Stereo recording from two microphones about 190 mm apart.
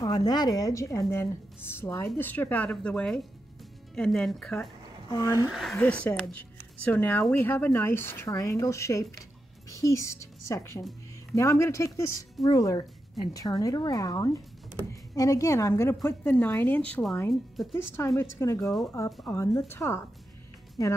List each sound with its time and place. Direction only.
0.0 s a woman's voice: 20° left (ahead or behind); by 4.6 s 5° left (ahead or behind)
5.1 s a woman's voice: 15° left (ahead or behind)
5.5 s a woman's voice: centre (ahead or behind)
18.6 s speech: centre (ahead or behind)
18.9 s a woman's voice: 15° left (ahead or behind)